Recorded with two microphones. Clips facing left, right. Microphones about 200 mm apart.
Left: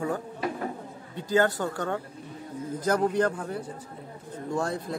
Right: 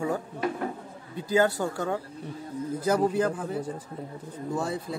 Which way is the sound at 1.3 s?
10° right (ahead or behind).